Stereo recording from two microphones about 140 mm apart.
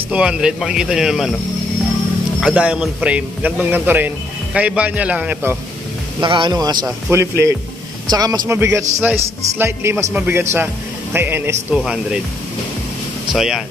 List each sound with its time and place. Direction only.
0.1 s speech: 5° right (ahead or behind)
2.4 s a man's voice: 5° right (ahead or behind)
6.2 s speech: 35° right (ahead or behind)
7.1 s a man's voice: 20° right (ahead or behind)
11.8 s speech: 5° right (ahead or behind)
13.3 s speech: 5° right (ahead or behind)